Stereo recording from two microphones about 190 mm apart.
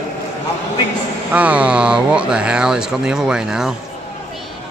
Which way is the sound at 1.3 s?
5° right (ahead or behind).